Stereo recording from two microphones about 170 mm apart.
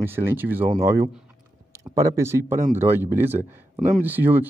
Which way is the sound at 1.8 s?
20° right (ahead or behind).